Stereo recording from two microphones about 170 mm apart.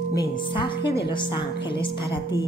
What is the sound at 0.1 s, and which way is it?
A woman's voice, 25° left (ahead or behind).